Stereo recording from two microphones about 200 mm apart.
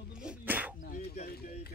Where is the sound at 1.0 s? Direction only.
35° left (ahead or behind).